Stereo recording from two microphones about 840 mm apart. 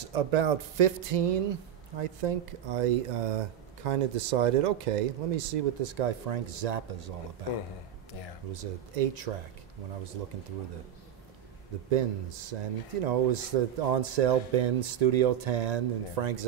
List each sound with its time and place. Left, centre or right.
0.1 s speech: right
8.5 s speech: right
11.9 s speech: right